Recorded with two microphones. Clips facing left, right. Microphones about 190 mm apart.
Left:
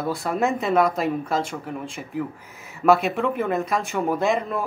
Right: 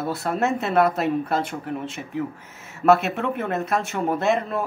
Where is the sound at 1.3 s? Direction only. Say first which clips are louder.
Even; 60° right (ahead or behind).